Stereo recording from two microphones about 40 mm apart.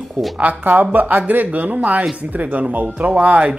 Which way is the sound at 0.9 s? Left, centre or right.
Right.